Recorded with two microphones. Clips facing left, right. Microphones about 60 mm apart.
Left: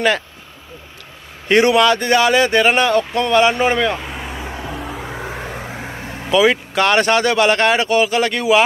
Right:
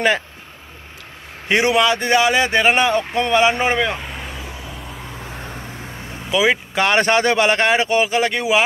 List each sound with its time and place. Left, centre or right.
1.5 s speech: centre
4.7 s vehicle: left
6.3 s speech: centre